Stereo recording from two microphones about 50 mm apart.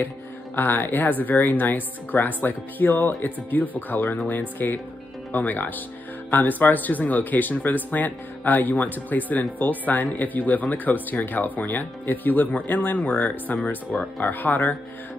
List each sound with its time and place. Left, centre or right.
0.6 s speech: left
14.2 s speech: left